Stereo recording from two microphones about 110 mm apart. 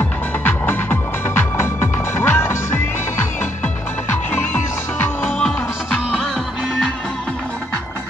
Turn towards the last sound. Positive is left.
turn(degrees=0)  # may be behind; listen again after turning